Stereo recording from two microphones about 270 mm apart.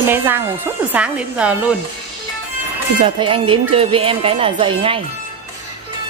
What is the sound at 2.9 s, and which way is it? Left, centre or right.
Speech, centre.